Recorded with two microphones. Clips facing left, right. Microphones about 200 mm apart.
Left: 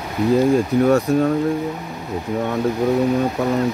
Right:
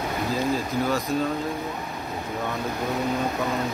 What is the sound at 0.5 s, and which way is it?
Speech, 65° left (ahead or behind).